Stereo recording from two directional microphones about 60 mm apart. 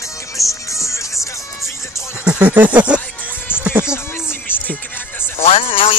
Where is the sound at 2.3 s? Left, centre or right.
Right.